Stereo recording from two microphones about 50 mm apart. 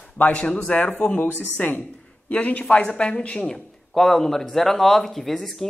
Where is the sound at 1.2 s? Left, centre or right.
Left.